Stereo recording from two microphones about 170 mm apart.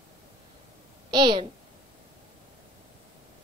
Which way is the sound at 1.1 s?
25° right (ahead or behind).